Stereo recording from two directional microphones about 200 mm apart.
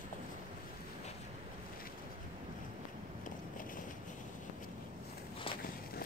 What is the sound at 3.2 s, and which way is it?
Vehicle, 45° left (ahead or behind).